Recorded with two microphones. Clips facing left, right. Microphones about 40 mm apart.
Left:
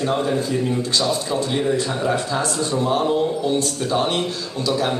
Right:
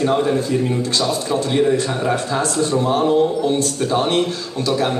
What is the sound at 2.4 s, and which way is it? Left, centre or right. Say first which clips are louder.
Speech: right 4 dB; right.